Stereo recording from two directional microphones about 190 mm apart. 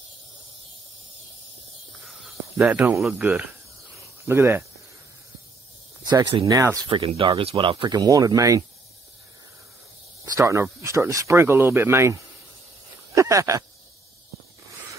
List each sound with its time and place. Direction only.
2.0 s a sound: centre (ahead or behind)
4.3 s speech: 10° right (ahead or behind)
6.0 s speech: 20° right (ahead or behind)
6.9 s speech: 30° right (ahead or behind)
10.3 s speech: 15° right (ahead or behind)